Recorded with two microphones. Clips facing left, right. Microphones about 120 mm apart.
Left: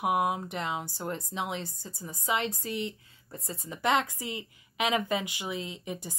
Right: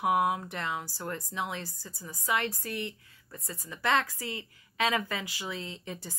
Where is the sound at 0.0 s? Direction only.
20° left (ahead or behind).